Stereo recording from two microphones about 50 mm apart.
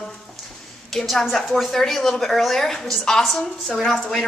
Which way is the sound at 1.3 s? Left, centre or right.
Centre.